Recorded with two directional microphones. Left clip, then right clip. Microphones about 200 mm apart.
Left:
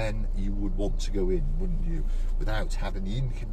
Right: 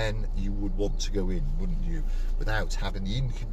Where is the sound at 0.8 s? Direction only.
25° right (ahead or behind).